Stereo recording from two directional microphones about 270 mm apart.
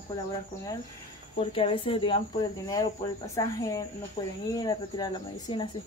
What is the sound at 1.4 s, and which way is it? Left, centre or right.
Speech, left.